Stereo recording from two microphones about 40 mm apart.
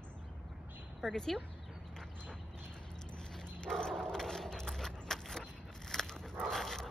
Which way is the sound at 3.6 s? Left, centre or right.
Centre.